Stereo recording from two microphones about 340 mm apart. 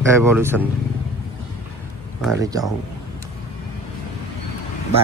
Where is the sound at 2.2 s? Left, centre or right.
Centre.